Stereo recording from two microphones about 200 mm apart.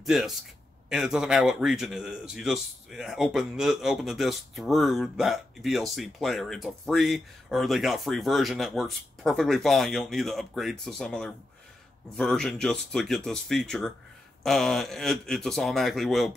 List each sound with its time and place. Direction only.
0.0 s a man's voice: centre (ahead or behind)